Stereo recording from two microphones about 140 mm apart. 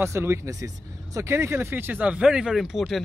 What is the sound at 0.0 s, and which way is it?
Speech, 20° right (ahead or behind).